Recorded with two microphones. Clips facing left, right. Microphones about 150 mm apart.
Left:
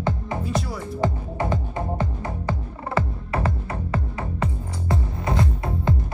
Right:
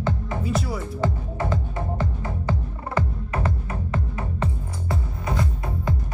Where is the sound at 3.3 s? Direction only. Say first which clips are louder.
Left 2 dB; 15° left (ahead or behind).